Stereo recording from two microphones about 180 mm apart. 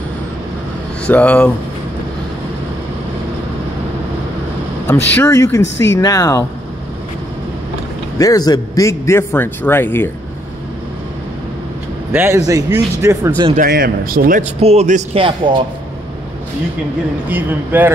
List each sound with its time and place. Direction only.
1.0 s a man's voice: 5° left (ahead or behind)
4.8 s a man's voice: 15° left (ahead or behind)
5.6 s speech: 80° left
5.9 s speech: 20° left (ahead or behind)
8.2 s a man's voice: 20° left (ahead or behind)
12.1 s speech: 15° right (ahead or behind)
13.6 s speech: 55° right (ahead or behind)
14.6 s a man's voice: 35° right (ahead or behind)
17.3 s speech: 10° right (ahead or behind)